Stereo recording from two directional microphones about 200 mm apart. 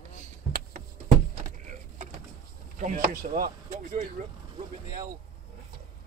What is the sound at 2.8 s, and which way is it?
Speech, 45° right (ahead or behind).